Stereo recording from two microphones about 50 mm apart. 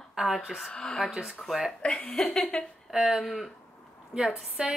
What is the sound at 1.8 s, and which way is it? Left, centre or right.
Speech, left.